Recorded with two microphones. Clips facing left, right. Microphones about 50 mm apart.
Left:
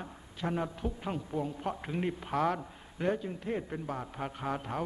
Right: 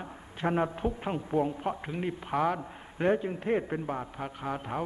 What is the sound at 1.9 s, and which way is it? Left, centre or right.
Speech, centre.